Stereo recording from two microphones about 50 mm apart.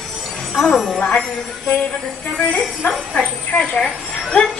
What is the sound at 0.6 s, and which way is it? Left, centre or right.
Speech, centre.